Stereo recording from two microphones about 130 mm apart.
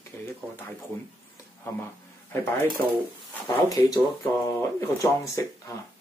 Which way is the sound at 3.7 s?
25° left (ahead or behind).